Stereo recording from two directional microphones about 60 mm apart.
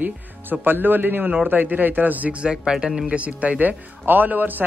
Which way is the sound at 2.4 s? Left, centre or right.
Centre.